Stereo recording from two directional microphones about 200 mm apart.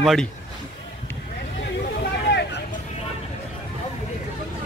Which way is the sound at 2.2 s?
55° left (ahead or behind).